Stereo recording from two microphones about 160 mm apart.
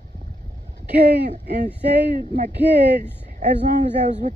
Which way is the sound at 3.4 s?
55° right (ahead or behind).